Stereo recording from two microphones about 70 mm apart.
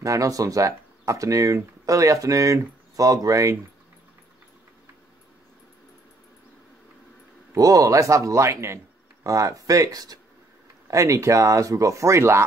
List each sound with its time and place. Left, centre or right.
0.0 s speech: right
7.5 s speech: right
10.9 s speech: right